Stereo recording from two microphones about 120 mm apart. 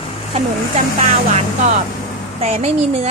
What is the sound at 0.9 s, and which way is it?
Speech, 70° right (ahead or behind).